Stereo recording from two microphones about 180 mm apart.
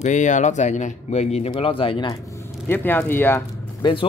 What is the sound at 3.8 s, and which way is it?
Speech, 30° left (ahead or behind).